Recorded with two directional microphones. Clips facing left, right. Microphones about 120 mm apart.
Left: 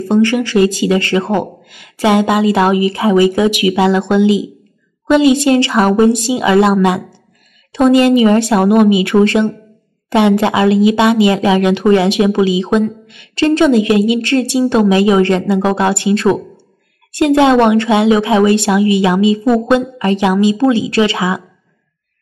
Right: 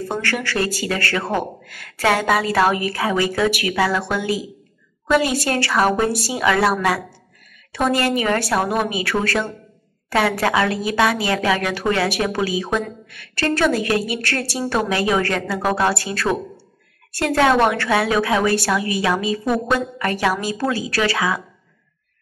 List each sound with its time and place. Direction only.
0.2 s a woman's voice: 15° left (ahead or behind)